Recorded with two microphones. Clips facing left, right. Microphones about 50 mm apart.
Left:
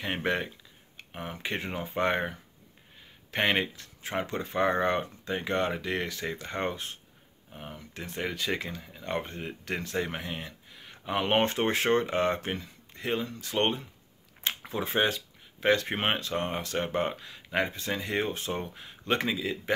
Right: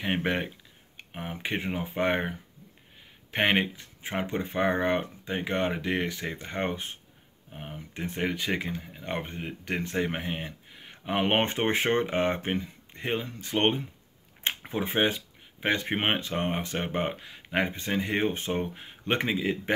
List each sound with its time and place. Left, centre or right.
0.0 s speech: centre